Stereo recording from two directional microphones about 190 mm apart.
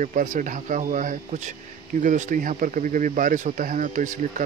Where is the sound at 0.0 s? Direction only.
40° right (ahead or behind).